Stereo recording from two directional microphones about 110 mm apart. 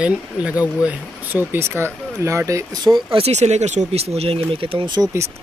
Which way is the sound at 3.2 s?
85° right.